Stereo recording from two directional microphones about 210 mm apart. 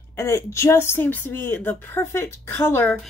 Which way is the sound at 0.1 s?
10° left (ahead or behind).